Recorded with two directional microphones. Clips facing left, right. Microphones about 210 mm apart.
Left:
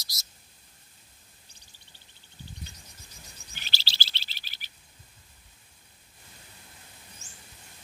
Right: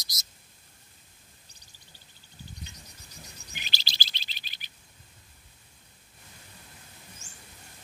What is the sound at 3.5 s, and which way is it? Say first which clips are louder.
Chirp: even; 15° right (ahead or behind).